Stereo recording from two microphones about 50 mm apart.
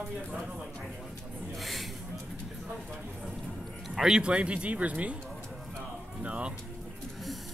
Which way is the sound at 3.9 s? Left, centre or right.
Centre.